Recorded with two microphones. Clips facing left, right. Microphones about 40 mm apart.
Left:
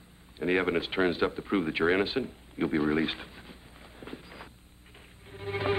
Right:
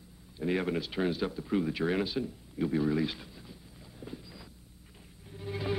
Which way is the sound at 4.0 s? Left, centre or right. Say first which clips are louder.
Left 2 dB; left.